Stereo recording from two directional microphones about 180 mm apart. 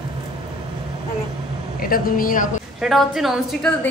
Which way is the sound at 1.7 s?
55° left (ahead or behind).